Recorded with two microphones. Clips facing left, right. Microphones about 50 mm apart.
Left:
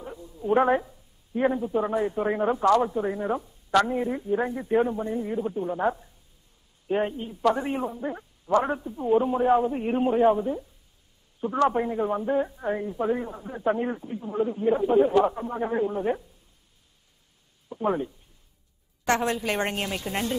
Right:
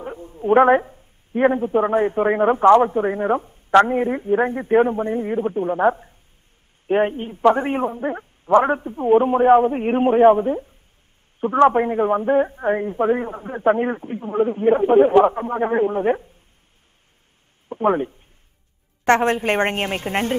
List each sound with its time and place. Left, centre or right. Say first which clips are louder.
0.0 s a woman's voice: right 7 dB; right
17.6 s a woman's voice: right 7 dB; right